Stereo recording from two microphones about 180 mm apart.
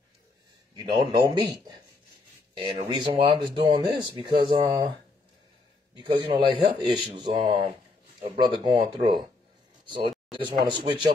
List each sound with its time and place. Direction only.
0.7 s speech: 25° right (ahead or behind)
5.9 s speech: 25° right (ahead or behind)
9.8 s speech: 25° right (ahead or behind)